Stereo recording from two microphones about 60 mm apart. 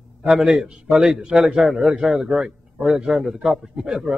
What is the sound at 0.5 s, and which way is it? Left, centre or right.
A man's voice, centre.